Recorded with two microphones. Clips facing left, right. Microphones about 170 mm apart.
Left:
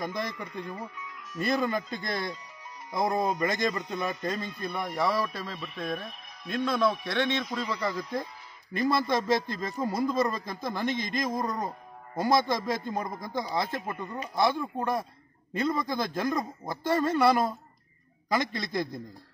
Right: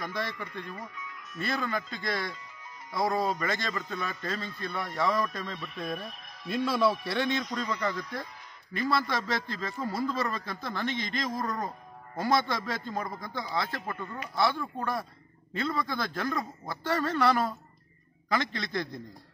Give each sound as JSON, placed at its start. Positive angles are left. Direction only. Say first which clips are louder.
{"t": 0.0, "sound": "a man's voice", "louder": "left 2 dB", "side_deg": 20}